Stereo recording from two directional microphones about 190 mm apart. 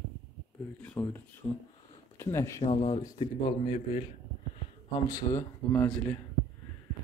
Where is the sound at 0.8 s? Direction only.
10° left (ahead or behind).